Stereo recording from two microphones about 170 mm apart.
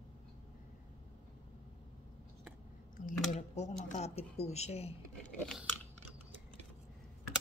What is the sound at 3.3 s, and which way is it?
Speech, 45° left (ahead or behind).